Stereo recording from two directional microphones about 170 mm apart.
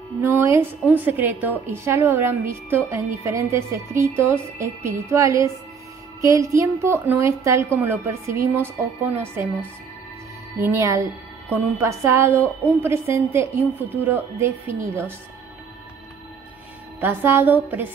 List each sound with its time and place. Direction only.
0.2 s a woman's voice: 15° right (ahead or behind)
10.6 s a woman's voice: 15° right (ahead or behind)
17.0 s a woman's voice: 10° right (ahead or behind)